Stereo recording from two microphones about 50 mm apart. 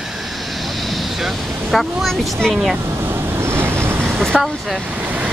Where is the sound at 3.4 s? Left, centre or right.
Right.